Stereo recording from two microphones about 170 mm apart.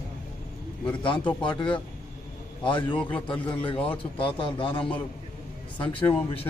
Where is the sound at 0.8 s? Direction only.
30° left (ahead or behind).